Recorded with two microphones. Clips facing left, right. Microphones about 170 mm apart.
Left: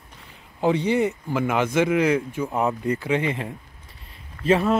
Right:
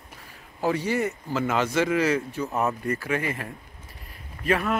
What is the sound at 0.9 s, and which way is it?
Speech, 15° left (ahead or behind).